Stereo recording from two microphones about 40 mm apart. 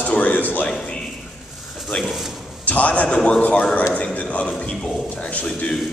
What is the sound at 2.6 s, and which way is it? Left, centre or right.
A man's voice, left.